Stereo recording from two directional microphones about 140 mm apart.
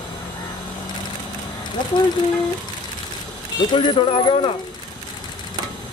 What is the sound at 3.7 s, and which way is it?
Speech, 35° left (ahead or behind).